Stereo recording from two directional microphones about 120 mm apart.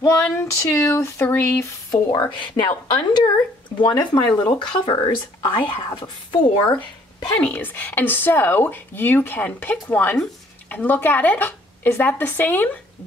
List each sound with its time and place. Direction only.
0.4 s speech: 20° left (ahead or behind)
1.9 s speech: 35° left (ahead or behind)
7.2 s speech: 15° left (ahead or behind)